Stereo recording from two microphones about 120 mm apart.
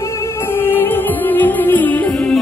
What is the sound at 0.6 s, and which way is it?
Music, 15° left (ahead or behind).